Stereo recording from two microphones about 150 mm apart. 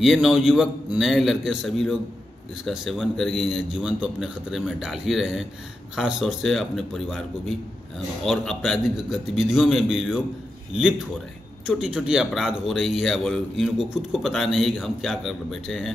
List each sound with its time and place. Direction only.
0.0 s a man's voice: centre (ahead or behind)
11.6 s a man's voice: 5° right (ahead or behind)